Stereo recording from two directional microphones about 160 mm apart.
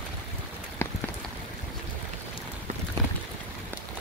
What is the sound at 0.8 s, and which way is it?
Rain on surface, 15° left (ahead or behind).